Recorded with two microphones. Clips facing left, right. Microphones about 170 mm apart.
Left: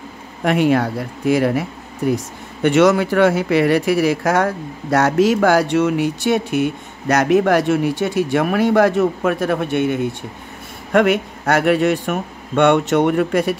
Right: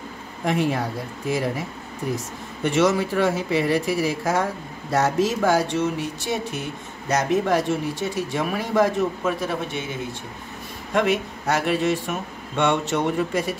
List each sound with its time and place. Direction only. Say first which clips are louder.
0.4 s speech: left 7 dB; 75° left (ahead or behind)
2.6 s speech: left 6 dB; 70° left (ahead or behind)